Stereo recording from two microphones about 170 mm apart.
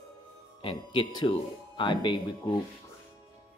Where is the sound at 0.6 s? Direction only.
30° left (ahead or behind).